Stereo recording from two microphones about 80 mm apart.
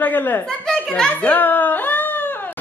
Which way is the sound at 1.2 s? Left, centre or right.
Left.